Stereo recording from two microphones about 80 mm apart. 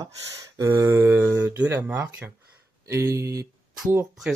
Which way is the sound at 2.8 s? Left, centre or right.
Right.